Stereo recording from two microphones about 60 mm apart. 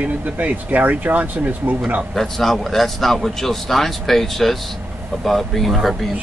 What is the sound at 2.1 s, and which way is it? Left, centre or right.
A man's voice, centre.